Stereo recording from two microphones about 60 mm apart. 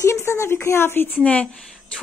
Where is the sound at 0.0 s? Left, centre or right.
Left.